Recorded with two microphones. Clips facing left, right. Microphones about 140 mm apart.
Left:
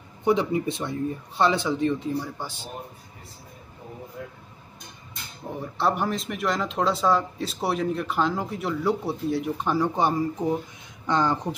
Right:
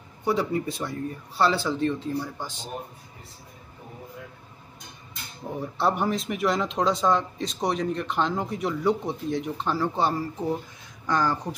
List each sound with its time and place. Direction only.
0.2 s speech: 20° left (ahead or behind)
5.6 s speech: centre (ahead or behind); by 11.3 s 20° left (ahead or behind)